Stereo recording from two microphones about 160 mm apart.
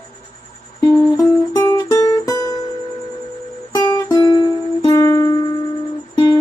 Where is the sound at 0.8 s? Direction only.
20° left (ahead or behind).